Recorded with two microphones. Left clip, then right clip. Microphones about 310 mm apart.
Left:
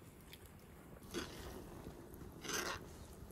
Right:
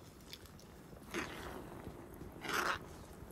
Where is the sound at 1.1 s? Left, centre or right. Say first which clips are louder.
Right 4 dB; centre.